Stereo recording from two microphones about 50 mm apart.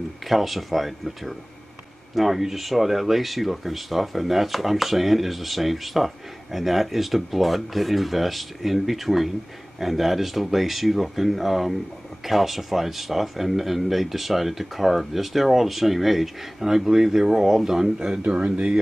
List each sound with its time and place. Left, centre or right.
0.3 s speech: centre; by 18.8 s right